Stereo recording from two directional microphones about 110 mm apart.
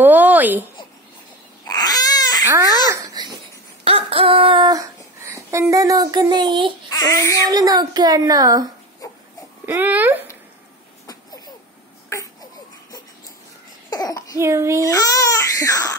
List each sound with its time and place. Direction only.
0.0 s a woman's voice: 15° right (ahead or behind)
1.7 s cat: 35° left (ahead or behind)
2.9 s babbling: 35° right (ahead or behind)
3.8 s a sound: 55° right (ahead or behind)
4.6 s speech: 30° right (ahead or behind)
6.9 s child singing: 35° left (ahead or behind)
7.4 s a woman's voice: 35° right (ahead or behind)
9.7 s speech: 15° right (ahead or behind)
11.1 s a sound: 35° left (ahead or behind)
13.8 s cough: 35° left (ahead or behind)
14.4 s a child's voice: 25° right (ahead or behind)
14.9 s speech: 35° left (ahead or behind)